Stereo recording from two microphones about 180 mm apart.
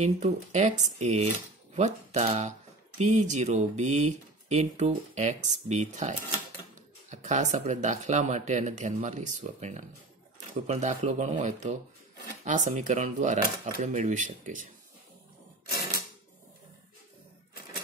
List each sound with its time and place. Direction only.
0.0 s speech: 40° right (ahead or behind)